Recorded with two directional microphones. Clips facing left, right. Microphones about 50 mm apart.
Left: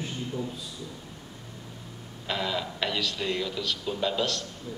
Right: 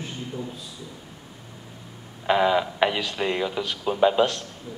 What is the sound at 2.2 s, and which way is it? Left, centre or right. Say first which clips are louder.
Speech: right 10 dB; right.